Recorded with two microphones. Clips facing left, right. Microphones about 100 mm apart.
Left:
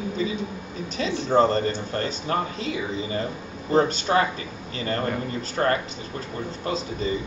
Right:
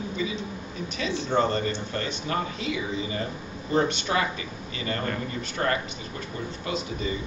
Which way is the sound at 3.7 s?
35° left (ahead or behind).